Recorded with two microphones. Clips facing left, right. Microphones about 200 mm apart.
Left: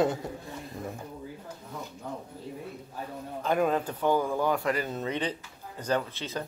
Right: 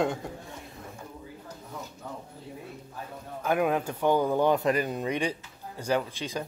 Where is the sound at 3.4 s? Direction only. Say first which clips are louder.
Even; 10° right (ahead or behind).